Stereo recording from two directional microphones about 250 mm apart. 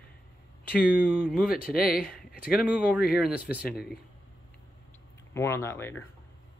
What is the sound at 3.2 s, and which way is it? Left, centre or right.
Speech, centre.